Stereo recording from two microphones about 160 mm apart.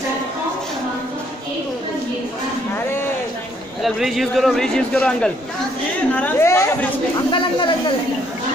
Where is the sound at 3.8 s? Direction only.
Centre (ahead or behind); by 6.8 s 15° left (ahead or behind).